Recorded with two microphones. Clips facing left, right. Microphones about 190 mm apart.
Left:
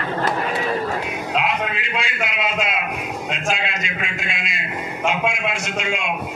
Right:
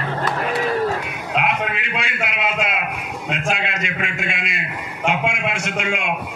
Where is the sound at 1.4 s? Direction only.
60° right (ahead or behind).